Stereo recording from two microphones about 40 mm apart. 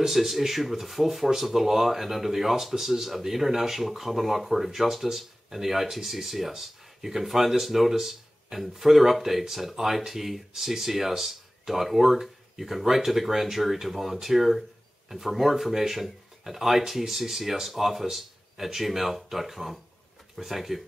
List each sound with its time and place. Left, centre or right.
0.0 s speech: centre